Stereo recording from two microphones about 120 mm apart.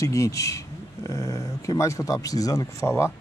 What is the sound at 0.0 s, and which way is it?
Speech, 25° left (ahead or behind).